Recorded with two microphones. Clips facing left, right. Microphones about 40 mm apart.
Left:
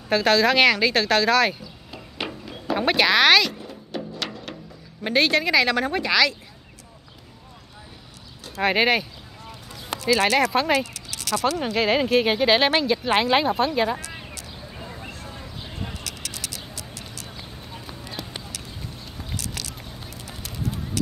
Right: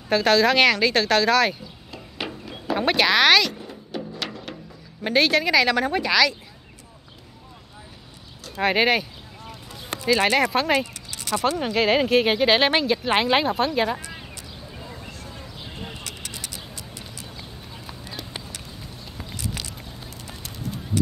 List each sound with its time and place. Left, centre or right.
0.1 s speech: centre
1.9 s a sound: centre
2.7 s music: centre
5.0 s speech: centre
8.5 s speech: centre
10.0 s speech: centre
11.1 s speech: centre
11.6 s speech: centre
16.0 s vehicle: left
19.1 s a sound: centre